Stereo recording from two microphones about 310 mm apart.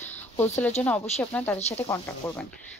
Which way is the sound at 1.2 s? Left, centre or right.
Centre.